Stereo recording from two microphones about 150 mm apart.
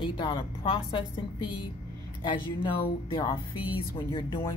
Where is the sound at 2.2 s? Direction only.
35° left (ahead or behind).